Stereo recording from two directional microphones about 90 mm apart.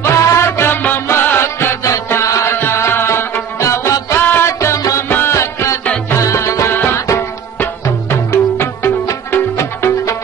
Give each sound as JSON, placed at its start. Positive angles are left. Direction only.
{"t": 0.0, "sound": "music", "side_deg": 35}
{"t": 7.5, "sound": "music", "side_deg": 20}
{"t": 8.3, "sound": "music", "side_deg": 30}